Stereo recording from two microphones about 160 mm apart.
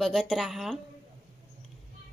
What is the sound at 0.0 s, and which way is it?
Speech, centre (ahead or behind).